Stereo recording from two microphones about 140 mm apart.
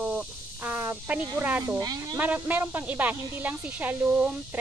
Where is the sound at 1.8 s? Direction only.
30° right (ahead or behind).